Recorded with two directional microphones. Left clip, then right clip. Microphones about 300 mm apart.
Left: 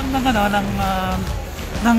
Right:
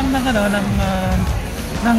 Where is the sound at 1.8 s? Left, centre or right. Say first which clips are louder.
Even; left.